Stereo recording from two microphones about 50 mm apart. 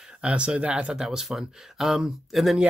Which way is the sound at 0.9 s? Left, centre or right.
Centre.